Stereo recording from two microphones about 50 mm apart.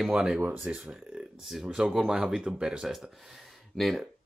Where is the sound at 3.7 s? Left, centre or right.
Centre.